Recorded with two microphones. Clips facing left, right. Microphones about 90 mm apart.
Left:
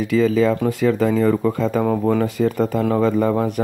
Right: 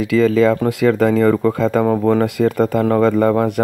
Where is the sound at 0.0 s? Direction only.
90° right.